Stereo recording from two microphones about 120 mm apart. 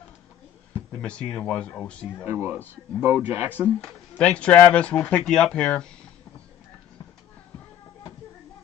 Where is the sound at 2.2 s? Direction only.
15° right (ahead or behind).